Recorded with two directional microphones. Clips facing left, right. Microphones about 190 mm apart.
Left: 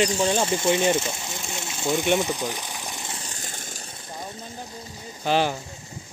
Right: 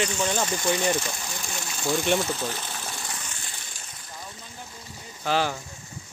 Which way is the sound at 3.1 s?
35° left (ahead or behind).